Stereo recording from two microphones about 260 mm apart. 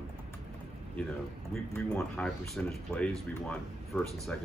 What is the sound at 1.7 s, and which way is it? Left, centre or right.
Speech, centre.